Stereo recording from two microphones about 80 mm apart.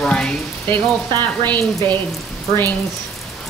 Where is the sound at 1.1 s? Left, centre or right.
Left.